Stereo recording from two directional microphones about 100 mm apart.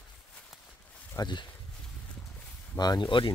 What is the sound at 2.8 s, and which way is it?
Speech, 45° left (ahead or behind).